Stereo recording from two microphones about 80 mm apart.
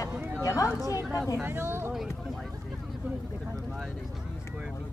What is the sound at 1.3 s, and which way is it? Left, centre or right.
Speech, right.